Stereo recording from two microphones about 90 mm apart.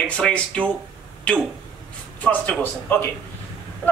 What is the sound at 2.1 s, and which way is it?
Speech, 15° left (ahead or behind).